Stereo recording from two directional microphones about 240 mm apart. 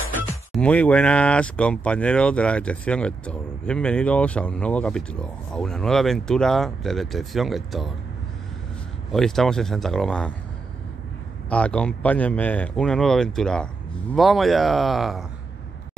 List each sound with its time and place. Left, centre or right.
0.5 s speech: centre
9.1 s speech: centre
11.4 s speech: centre